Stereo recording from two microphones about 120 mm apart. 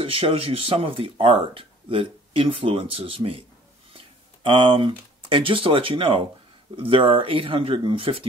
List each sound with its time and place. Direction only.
0.0 s speech: 50° right (ahead or behind)